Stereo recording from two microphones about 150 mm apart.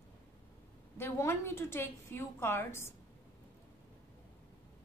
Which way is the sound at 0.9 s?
15° left (ahead or behind).